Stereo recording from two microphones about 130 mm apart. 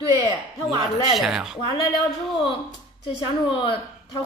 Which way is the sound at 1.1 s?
Centre (ahead or behind).